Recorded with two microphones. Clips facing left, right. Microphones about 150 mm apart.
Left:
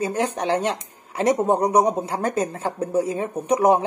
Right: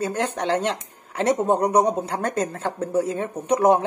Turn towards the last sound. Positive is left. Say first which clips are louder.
# even
turn(degrees=10)  # may be behind; listen again after turning